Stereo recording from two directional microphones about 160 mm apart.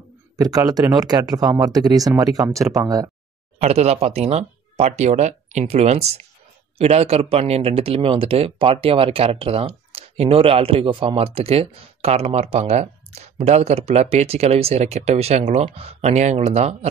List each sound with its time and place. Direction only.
0.4 s speech: 20° right (ahead or behind)
3.5 s speech: 40° right (ahead or behind)